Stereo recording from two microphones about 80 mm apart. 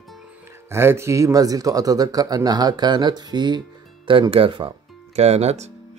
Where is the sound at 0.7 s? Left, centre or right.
Right.